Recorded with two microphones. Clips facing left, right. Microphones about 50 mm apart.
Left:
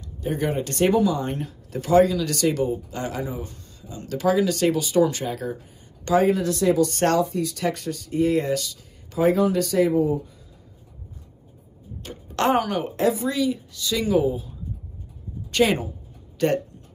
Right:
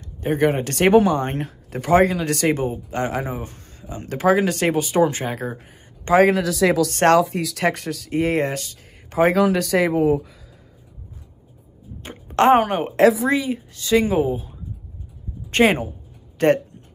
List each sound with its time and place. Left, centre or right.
0.2 s speech: right
2.5 s speech: right
2.9 s speech: right
6.1 s speech: right
6.9 s speech: right
7.9 s speech: right
9.2 s speech: right
12.0 s a woman's voice: right
12.9 s speech: right
13.3 s speech: right
15.5 s speech: right